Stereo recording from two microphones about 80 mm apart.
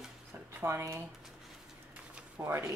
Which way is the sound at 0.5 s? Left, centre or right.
Right.